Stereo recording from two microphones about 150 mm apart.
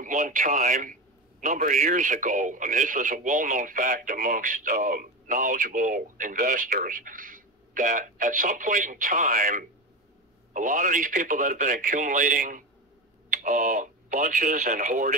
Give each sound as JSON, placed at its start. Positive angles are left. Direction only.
{"t": 0.0, "sound": "a man's voice", "side_deg": -60}